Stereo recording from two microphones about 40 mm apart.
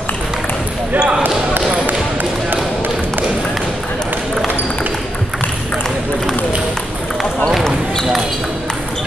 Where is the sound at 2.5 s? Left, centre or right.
Right.